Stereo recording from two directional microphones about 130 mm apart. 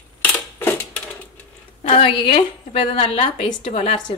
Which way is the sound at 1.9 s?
45° left (ahead or behind).